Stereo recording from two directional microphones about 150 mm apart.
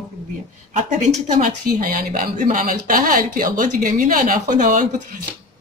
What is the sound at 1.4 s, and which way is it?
A woman's voice, 70° right (ahead or behind).